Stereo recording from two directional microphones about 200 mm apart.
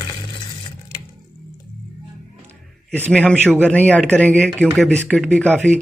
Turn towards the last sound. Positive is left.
turn(degrees=5)  # may be behind; listen again after turning